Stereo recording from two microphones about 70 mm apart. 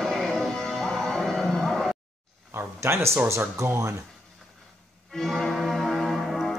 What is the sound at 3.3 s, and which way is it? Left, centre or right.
Speech, right.